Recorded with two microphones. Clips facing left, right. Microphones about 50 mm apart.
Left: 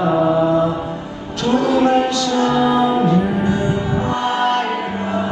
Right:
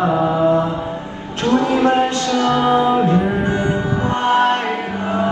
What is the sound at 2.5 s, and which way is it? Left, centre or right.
Music, right.